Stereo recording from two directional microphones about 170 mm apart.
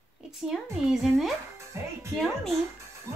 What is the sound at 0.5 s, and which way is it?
Speech, centre (ahead or behind).